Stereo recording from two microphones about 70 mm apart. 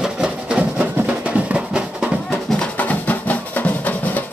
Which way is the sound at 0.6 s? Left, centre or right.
Centre.